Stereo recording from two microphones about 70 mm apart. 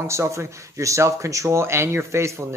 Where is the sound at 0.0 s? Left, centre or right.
Right.